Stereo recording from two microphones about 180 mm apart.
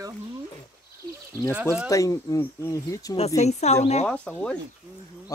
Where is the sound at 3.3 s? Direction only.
40° left (ahead or behind).